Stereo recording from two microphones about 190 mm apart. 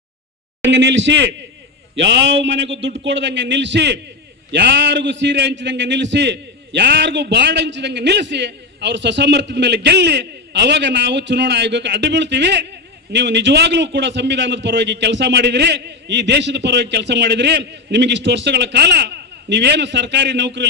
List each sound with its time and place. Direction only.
0.7 s a man's voice: 70° right (ahead or behind)
2.4 s a man's voice: 70° right (ahead or behind)